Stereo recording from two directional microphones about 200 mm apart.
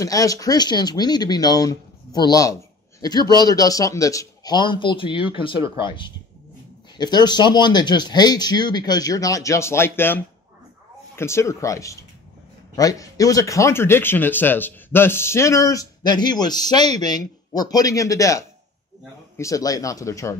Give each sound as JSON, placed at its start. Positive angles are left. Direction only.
{"t": 0.0, "sound": "speech", "side_deg": 15}